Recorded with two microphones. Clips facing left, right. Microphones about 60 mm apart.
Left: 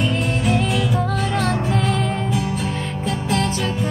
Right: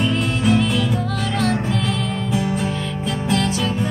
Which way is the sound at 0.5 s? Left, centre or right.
Left.